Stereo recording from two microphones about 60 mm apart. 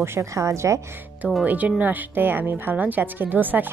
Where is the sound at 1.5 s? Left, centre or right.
Right.